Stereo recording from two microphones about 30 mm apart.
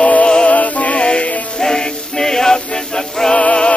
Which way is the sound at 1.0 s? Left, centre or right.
Left.